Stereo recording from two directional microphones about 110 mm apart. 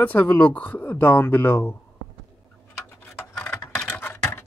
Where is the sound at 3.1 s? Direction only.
30° left (ahead or behind).